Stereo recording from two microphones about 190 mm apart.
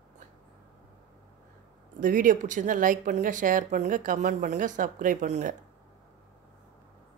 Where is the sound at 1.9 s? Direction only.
45° right (ahead or behind).